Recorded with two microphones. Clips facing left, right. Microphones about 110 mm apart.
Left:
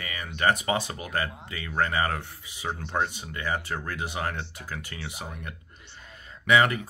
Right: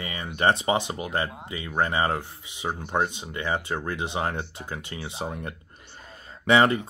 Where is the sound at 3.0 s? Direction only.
20° right (ahead or behind).